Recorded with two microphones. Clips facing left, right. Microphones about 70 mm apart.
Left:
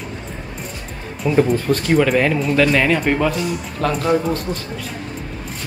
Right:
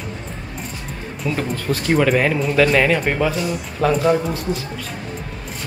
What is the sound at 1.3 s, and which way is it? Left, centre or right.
Speech, centre.